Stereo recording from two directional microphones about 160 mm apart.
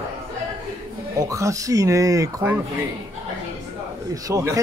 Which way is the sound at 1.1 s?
20° right (ahead or behind).